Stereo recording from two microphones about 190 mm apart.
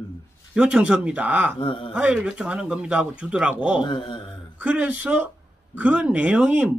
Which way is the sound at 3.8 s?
25° left (ahead or behind).